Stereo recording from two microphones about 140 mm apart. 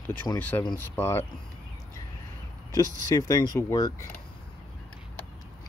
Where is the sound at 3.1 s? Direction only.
25° left (ahead or behind).